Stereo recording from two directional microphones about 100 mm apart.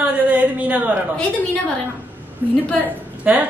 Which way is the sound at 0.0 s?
15° right (ahead or behind).